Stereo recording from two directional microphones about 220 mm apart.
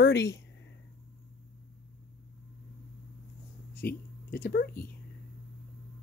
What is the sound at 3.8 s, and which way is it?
Speech, 45° left (ahead or behind).